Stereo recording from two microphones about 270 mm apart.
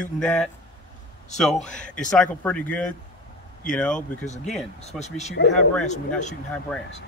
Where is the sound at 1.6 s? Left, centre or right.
Centre.